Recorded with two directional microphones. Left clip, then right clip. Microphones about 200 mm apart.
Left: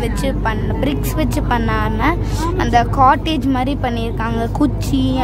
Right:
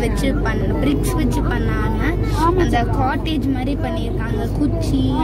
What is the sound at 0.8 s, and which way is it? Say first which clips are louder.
Speech: left 2 dB; 20° left (ahead or behind).